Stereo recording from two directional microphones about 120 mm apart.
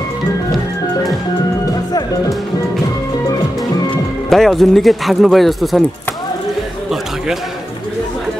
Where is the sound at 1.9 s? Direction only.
30° left (ahead or behind).